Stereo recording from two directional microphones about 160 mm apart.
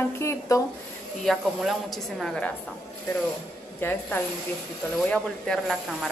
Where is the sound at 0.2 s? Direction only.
15° left (ahead or behind).